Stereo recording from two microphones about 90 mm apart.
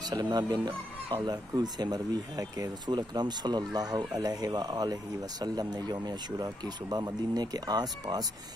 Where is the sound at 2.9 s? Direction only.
55° right (ahead or behind).